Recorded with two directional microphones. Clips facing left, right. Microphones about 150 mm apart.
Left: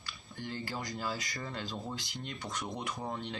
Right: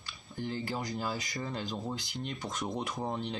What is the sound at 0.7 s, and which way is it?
Speech, 20° right (ahead or behind).